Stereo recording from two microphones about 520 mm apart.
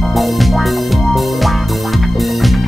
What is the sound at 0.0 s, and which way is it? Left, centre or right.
Music, centre.